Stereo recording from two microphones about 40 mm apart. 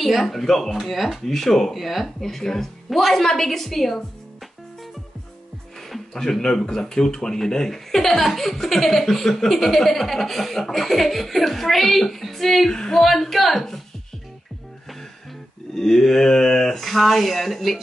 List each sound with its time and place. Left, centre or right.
0.0 s chuckle: centre
2.1 s speech: centre
5.8 s music: centre
6.4 s speech: centre
9.4 s chuckle: centre
12.7 s speech: centre
13.0 s chuckle: centre
15.7 s speech: centre
16.8 s chuckle: centre